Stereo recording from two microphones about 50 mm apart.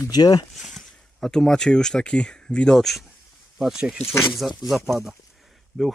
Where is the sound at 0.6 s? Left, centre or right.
Centre.